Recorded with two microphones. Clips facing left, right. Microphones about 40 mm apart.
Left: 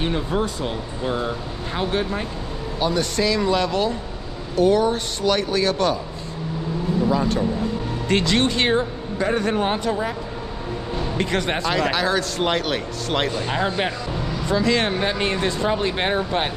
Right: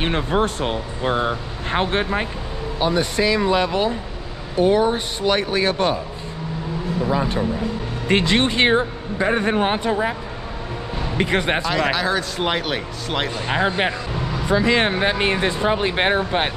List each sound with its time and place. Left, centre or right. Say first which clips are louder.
0.0 s speech: right 3 dB; right
2.8 s speech: right 2 dB; centre
7.1 s speech: right 1 dB; centre
11.1 s speech: right 4 dB; right
11.6 s speech: right 1 dB; centre
13.3 s speech: right 2 dB; centre